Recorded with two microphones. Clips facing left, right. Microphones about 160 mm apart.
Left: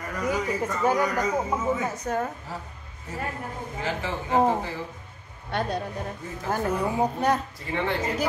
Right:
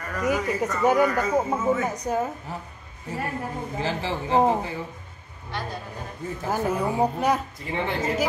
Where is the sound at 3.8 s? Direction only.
30° right (ahead or behind).